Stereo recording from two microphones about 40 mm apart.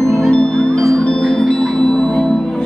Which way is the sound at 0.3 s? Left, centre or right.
Left.